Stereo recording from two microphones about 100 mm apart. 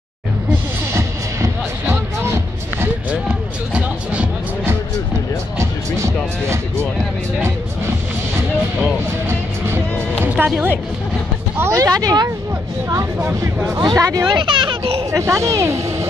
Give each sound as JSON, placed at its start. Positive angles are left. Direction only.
{"t": 0.9, "sound": "music", "side_deg": -30}
{"t": 3.1, "sound": "music", "side_deg": -10}
{"t": 5.6, "sound": "music", "side_deg": -30}
{"t": 8.4, "sound": "music", "side_deg": -25}
{"t": 11.5, "sound": "speech", "side_deg": -30}
{"t": 12.9, "sound": "speech", "side_deg": -25}
{"t": 15.0, "sound": "speech", "side_deg": -30}